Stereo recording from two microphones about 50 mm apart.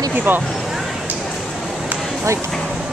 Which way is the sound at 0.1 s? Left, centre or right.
Right.